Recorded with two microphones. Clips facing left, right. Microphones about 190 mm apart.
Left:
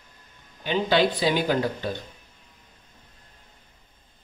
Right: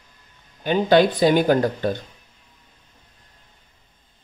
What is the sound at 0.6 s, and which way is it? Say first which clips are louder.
Speech: right 6 dB; 50° right (ahead or behind).